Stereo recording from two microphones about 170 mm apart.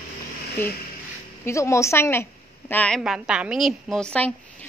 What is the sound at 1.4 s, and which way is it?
A woman's voice, 15° left (ahead or behind).